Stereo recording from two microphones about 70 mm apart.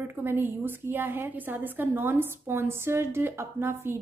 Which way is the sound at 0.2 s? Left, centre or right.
Right.